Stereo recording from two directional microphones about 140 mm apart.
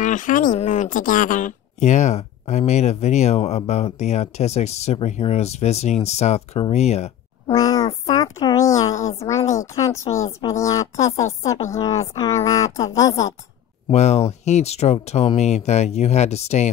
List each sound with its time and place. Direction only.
0.0 s speech: 65° left (ahead or behind); by 7.5 s 50° left (ahead or behind)
7.5 s a sound: 25° left (ahead or behind)
9.5 s a woman's voice: 25° left (ahead or behind)
13.8 s speech: 50° left (ahead or behind)